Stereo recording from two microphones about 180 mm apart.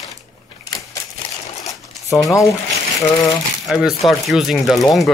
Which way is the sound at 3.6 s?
Centre (ahead or behind).